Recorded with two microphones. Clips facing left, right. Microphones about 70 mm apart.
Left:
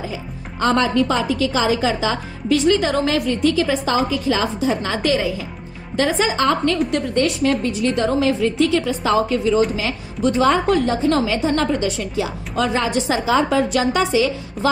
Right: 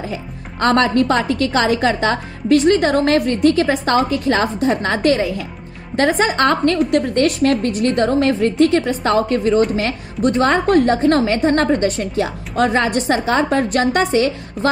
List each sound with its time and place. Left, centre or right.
0.1 s speech: right